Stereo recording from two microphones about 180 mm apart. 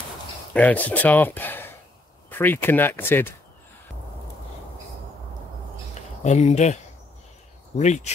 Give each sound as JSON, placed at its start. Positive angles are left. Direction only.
{"t": 0.5, "sound": "speech", "side_deg": 10}
{"t": 6.2, "sound": "speech", "side_deg": 40}